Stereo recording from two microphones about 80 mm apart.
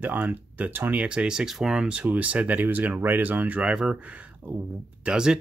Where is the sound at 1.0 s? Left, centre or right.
Centre.